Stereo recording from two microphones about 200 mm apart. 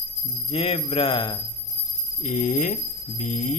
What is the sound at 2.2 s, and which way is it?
Speech, 40° left (ahead or behind).